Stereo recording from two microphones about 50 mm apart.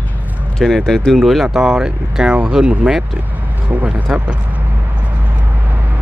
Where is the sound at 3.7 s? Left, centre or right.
Right.